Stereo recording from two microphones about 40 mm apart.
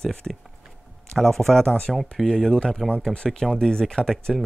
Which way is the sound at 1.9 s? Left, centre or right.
Centre.